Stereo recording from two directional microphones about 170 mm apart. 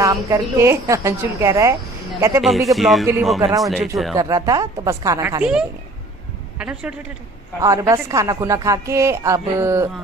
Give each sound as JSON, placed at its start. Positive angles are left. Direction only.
{"t": 0.0, "sound": "a woman's voice", "side_deg": -20}
{"t": 2.4, "sound": "a man's voice", "side_deg": 0}
{"t": 4.1, "sound": "speech", "side_deg": -20}
{"t": 5.4, "sound": "a man's voice", "side_deg": -5}
{"t": 7.6, "sound": "a woman's voice", "side_deg": -20}